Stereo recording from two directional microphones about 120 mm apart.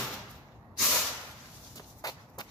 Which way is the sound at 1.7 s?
30° left (ahead or behind).